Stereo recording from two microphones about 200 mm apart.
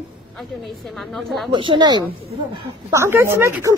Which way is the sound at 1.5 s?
25° right (ahead or behind).